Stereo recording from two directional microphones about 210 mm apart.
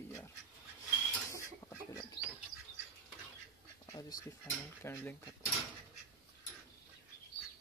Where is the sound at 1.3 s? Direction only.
15° left (ahead or behind).